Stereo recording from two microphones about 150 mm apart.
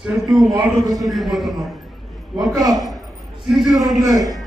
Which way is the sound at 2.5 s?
25° right (ahead or behind).